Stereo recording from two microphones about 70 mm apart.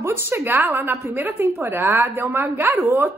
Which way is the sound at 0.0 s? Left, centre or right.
Right.